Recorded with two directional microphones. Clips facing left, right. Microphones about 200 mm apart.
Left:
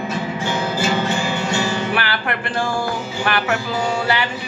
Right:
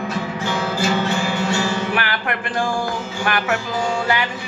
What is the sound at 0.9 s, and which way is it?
Music, 10° left (ahead or behind).